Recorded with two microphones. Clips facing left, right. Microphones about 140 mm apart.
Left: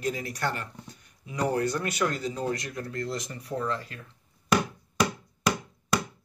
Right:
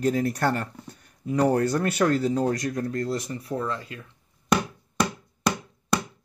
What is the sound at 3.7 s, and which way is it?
Speech, 15° right (ahead or behind).